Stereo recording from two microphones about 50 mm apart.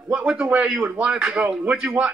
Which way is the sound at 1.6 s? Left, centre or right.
Right.